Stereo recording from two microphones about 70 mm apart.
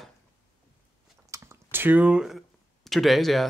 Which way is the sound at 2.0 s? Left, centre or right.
Centre.